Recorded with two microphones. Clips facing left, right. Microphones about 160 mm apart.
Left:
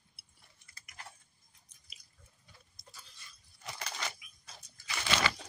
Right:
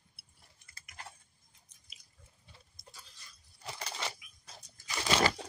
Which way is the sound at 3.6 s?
30° right (ahead or behind).